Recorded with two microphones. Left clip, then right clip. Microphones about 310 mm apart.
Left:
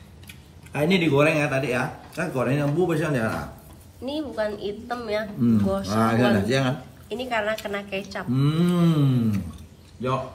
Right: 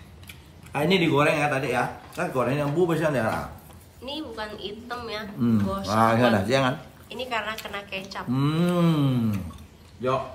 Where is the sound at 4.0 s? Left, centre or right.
Centre.